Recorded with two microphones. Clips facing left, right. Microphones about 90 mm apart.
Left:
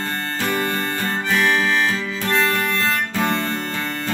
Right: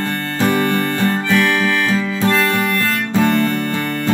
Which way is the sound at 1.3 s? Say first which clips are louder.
Right 1 dB; 25° left (ahead or behind).